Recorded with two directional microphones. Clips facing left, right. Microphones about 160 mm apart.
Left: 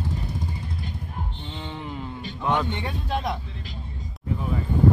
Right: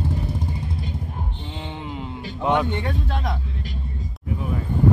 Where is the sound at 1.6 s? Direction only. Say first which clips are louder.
Right 1 dB; 20° right (ahead or behind).